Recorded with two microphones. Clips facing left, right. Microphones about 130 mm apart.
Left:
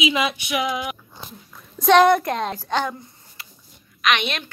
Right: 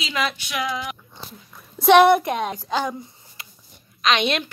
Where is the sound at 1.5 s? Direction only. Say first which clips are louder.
Right 1 dB; 10° right (ahead or behind).